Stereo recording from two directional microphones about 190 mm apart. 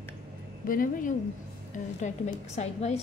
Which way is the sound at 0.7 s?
45° left (ahead or behind).